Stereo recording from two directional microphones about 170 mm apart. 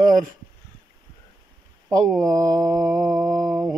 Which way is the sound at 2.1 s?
20° right (ahead or behind).